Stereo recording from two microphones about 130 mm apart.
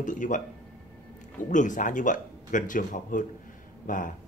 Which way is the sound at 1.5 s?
75° left (ahead or behind).